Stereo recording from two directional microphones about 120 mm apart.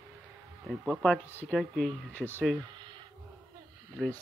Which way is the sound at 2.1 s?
15° left (ahead or behind).